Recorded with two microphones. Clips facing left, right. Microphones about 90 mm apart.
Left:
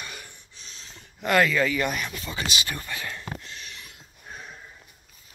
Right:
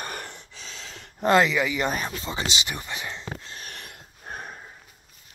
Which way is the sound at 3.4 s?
40° right (ahead or behind).